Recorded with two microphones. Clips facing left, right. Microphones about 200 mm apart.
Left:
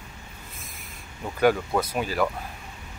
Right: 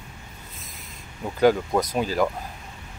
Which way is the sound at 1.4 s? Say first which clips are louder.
Right 2 dB; 15° right (ahead or behind).